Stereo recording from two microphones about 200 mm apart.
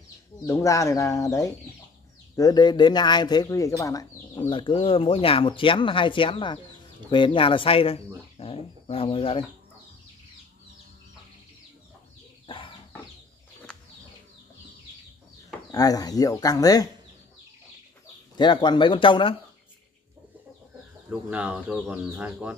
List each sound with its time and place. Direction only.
0.5 s speech: 15° left (ahead or behind)
12.4 s chicken: 25° left (ahead or behind)
15.7 s speech: 20° left (ahead or behind)
18.3 s speech: 20° left (ahead or behind)
21.1 s speech: 5° right (ahead or behind)